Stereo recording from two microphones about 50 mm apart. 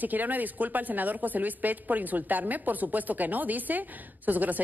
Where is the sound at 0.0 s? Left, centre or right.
Right.